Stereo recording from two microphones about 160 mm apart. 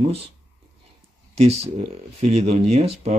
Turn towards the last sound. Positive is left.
turn(degrees=-40)  # may be behind; listen again after turning